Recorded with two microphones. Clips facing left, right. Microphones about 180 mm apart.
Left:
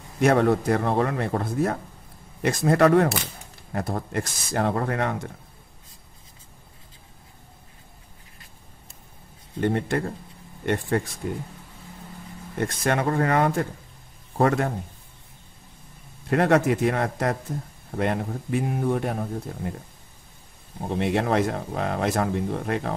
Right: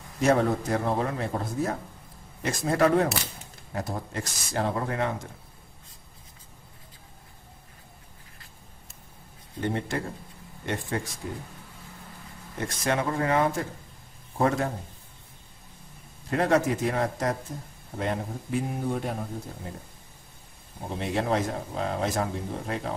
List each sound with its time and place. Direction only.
0.2 s speech: 65° left (ahead or behind)
9.6 s speech: 55° left (ahead or behind)
12.5 s speech: 55° left (ahead or behind)
16.3 s speech: 65° left (ahead or behind)
20.9 s speech: 65° left (ahead or behind)